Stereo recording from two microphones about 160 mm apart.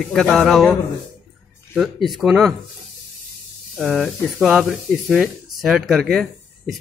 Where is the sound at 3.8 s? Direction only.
Centre (ahead or behind).